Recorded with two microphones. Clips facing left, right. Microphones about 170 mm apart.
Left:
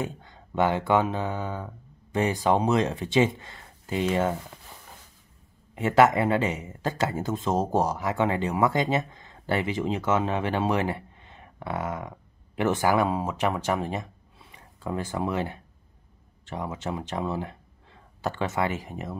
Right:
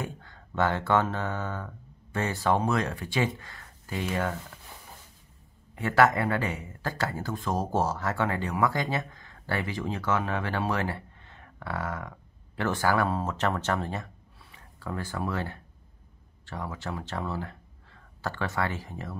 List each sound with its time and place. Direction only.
0.0 s speech: 20° left (ahead or behind)
5.8 s speech: 20° left (ahead or behind)